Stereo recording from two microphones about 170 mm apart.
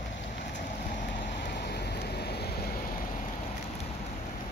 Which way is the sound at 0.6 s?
60° left (ahead or behind).